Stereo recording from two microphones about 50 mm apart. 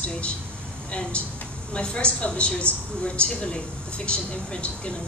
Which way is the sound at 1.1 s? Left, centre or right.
Left.